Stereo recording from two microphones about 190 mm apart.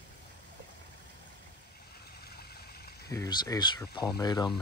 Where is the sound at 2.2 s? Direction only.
55° left (ahead or behind).